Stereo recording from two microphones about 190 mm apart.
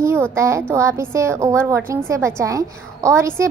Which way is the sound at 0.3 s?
15° right (ahead or behind).